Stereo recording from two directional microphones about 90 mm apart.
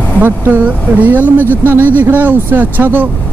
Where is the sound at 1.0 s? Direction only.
20° right (ahead or behind).